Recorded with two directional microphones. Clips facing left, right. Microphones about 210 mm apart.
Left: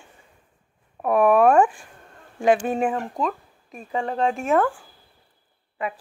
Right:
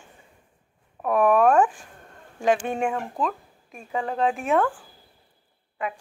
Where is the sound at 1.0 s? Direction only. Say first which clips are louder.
Left 2 dB; 10° left (ahead or behind).